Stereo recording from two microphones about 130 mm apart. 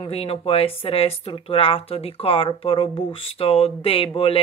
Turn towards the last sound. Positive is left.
turn(degrees=45)  # may be behind; listen again after turning